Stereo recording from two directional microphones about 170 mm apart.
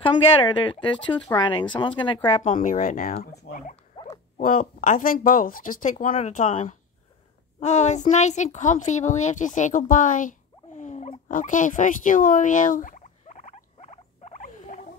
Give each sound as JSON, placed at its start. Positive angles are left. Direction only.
{"t": 0.0, "sound": "speech", "side_deg": 30}
{"t": 2.4, "sound": "speech", "side_deg": 50}
{"t": 3.5, "sound": "rodents", "side_deg": 90}
{"t": 4.4, "sound": "speech", "side_deg": 55}
{"t": 7.6, "sound": "a sound", "side_deg": 45}